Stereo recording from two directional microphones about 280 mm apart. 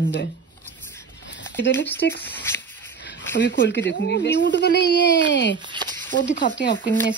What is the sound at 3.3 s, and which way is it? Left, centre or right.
Speech, left.